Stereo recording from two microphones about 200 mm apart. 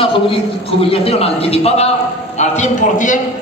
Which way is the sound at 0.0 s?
25° left (ahead or behind).